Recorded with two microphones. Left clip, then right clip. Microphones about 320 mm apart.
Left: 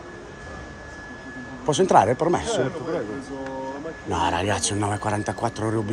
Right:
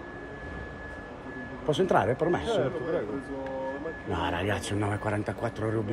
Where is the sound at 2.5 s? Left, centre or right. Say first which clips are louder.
Left 3 dB; left.